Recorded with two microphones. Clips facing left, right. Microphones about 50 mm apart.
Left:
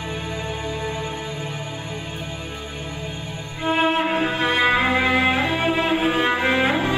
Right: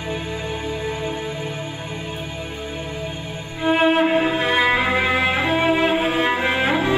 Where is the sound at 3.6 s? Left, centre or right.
Centre.